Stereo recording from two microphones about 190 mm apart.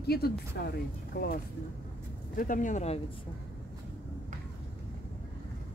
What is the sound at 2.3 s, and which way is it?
Speech, 45° left (ahead or behind).